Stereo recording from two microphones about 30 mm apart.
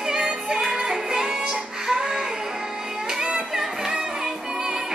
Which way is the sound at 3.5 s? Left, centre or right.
Centre.